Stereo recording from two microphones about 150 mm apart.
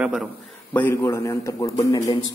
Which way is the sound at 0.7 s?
15° left (ahead or behind).